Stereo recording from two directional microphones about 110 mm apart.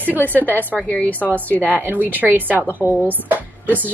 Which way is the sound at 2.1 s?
15° right (ahead or behind).